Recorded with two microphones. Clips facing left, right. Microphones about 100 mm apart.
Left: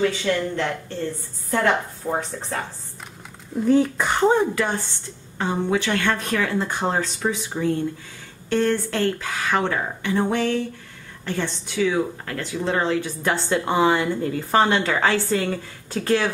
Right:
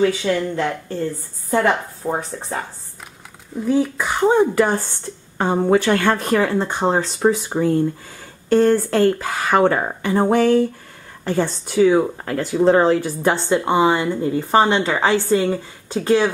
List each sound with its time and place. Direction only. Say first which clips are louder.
0.0 s a woman's voice: right 4 dB; 15° right (ahead or behind)
2.0 s a woman's voice: right 4 dB; 15° right (ahead or behind)
3.5 s speech: left 1 dB; centre (ahead or behind)
4.6 s speech: right 7 dB; 40° right (ahead or behind)
6.5 s speech: right 4 dB; 30° right (ahead or behind)
7.1 s speech: right 8 dB; 40° right (ahead or behind)
13.5 s a woman's voice: right 2 dB; 20° right (ahead or behind)